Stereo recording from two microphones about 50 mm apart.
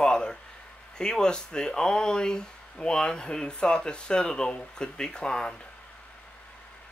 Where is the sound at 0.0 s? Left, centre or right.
Centre.